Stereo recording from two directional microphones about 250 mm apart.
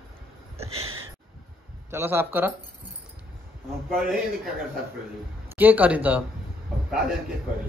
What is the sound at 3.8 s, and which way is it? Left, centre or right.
Speech, centre.